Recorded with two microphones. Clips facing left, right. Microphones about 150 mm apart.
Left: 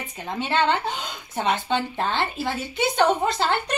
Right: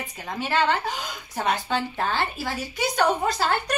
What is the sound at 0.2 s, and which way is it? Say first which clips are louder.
A woman's voice: left 1 dB; 20° left (ahead or behind).